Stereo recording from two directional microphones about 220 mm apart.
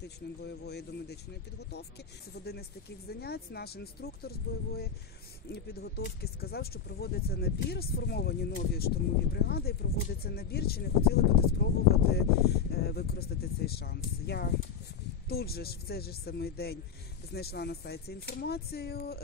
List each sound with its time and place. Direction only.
0.4 s speech: 50° left (ahead or behind)
2.4 s speech: 45° left (ahead or behind)
5.5 s speech: 45° left (ahead or behind)